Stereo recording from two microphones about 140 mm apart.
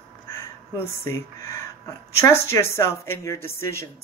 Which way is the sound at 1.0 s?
20° left (ahead or behind).